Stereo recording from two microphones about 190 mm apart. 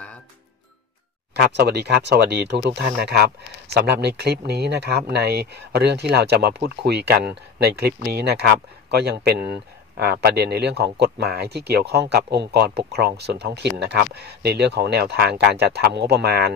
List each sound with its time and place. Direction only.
1.3 s speech: 60° right (ahead or behind)